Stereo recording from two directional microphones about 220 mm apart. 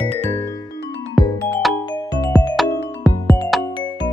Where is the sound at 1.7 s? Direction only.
15° left (ahead or behind).